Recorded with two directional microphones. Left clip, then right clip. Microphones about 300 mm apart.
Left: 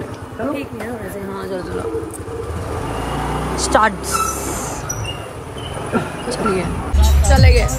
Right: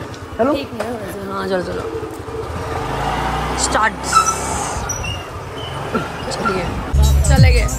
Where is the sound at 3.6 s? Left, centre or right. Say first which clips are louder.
Left 4 dB; centre.